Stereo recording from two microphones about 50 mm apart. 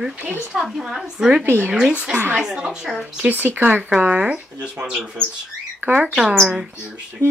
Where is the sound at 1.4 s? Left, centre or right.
Right.